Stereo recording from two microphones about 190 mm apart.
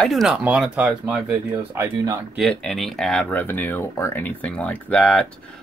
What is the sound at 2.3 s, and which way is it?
Speech, centre (ahead or behind).